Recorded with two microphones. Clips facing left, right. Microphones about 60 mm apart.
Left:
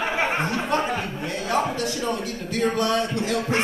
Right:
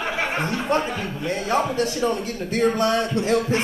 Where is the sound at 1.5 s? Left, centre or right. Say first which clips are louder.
Right 2 dB; right.